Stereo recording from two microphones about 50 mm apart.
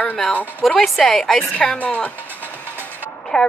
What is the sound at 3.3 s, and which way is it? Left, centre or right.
Speech, centre.